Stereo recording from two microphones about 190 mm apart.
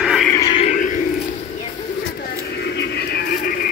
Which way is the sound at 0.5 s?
40° left (ahead or behind).